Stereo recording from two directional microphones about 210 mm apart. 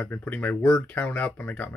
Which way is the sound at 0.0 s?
10° left (ahead or behind).